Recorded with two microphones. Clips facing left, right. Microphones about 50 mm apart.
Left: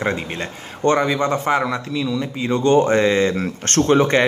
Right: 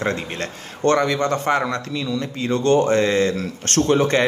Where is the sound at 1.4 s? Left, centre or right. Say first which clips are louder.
Left 1 dB; centre.